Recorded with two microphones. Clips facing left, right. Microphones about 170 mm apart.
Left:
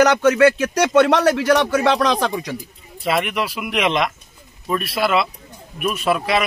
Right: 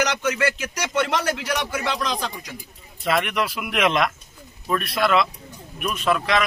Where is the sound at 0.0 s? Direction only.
55° left (ahead or behind); by 2.5 s 75° left (ahead or behind).